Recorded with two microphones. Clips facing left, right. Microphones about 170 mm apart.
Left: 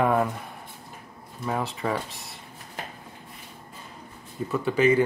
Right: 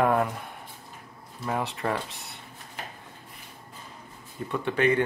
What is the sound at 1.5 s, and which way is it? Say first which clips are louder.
Speech: left 1 dB; centre (ahead or behind).